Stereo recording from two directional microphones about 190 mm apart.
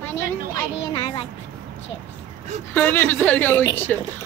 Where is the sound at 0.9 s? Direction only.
25° left (ahead or behind).